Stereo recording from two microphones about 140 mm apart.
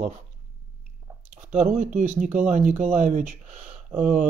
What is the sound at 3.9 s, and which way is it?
Speech, 70° right (ahead or behind).